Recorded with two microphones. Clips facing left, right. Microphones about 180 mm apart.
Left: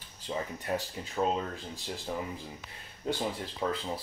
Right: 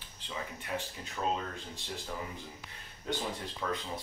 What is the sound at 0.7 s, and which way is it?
Speech, 40° left (ahead or behind).